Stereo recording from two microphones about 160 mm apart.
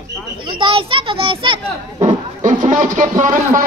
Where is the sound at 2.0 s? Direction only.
50° right (ahead or behind).